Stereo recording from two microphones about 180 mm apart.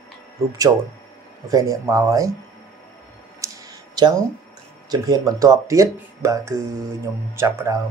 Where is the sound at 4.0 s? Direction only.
25° right (ahead or behind).